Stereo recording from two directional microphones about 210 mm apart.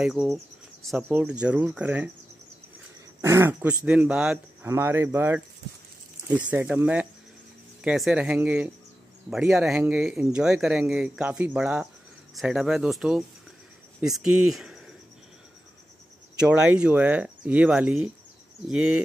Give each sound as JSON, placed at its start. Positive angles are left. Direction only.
{"t": 0.0, "sound": "speech", "side_deg": 0}
{"t": 3.2, "sound": "speech", "side_deg": -10}
{"t": 16.3, "sound": "speech", "side_deg": -5}